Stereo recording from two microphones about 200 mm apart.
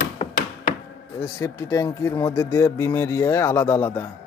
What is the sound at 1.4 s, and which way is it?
Speech, 15° left (ahead or behind).